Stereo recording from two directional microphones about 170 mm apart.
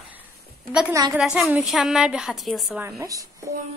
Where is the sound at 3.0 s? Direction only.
20° right (ahead or behind).